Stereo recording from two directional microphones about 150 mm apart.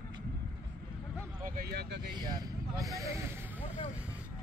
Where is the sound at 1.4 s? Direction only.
90° right.